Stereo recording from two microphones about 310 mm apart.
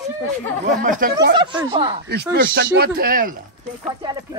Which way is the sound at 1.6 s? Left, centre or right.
Centre.